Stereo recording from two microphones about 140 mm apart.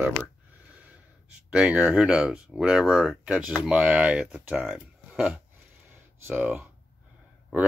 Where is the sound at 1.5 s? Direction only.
5° right (ahead or behind).